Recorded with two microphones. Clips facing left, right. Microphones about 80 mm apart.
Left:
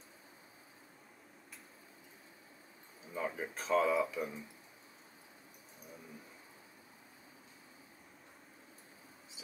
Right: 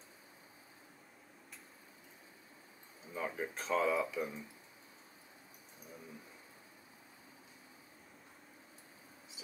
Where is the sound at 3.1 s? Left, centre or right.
Centre.